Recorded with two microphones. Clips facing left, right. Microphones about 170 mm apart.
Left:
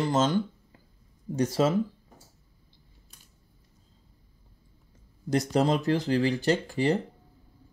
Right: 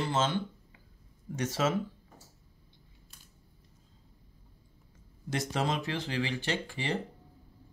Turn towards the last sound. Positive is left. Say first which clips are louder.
# left 9 dB
turn(degrees=40)  # may be behind; listen again after turning